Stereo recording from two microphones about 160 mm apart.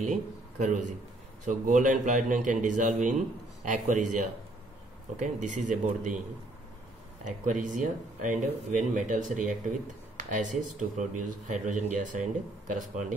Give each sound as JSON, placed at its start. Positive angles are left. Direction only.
{"t": 0.0, "sound": "speech", "side_deg": -50}
{"t": 5.2, "sound": "speech", "side_deg": -50}
{"t": 7.2, "sound": "speech", "side_deg": -50}